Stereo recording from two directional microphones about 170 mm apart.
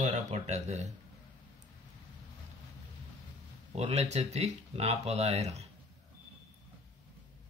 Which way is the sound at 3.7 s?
40° right (ahead or behind).